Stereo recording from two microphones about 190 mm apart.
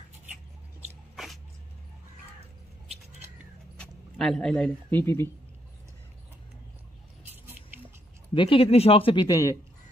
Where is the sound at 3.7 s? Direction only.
Centre (ahead or behind).